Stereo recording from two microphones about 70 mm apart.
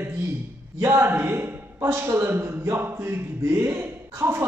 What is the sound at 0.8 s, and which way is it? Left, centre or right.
Speech, right.